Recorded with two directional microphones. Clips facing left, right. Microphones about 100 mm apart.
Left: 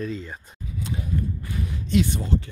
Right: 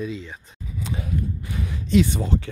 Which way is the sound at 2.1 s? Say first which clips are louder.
Right 1 dB; 90° right.